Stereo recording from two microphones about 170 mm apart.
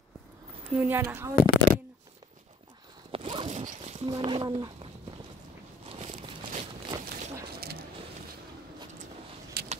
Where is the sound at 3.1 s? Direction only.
35° right (ahead or behind).